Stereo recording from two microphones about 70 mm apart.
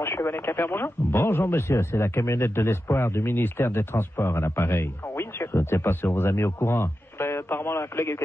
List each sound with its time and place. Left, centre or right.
0.0 s speech: left